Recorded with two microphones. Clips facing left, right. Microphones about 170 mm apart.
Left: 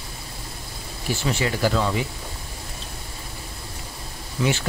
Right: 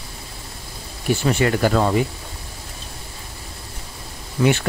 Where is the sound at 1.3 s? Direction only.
55° right (ahead or behind).